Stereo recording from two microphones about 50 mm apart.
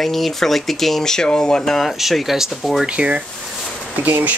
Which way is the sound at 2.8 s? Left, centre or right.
Right.